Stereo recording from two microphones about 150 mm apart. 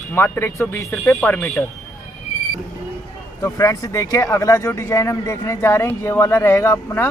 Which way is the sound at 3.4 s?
20° left (ahead or behind).